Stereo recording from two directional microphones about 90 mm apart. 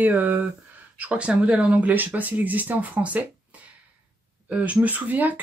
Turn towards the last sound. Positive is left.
turn(degrees=-20)  # may be behind; listen again after turning